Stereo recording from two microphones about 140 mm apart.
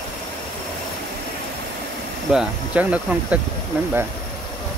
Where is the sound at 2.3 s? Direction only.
10° right (ahead or behind).